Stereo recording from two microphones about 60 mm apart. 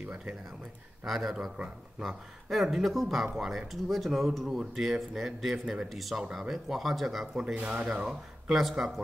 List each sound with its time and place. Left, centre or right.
0.0 s speech: right
1.0 s speech: centre
7.5 s speech: centre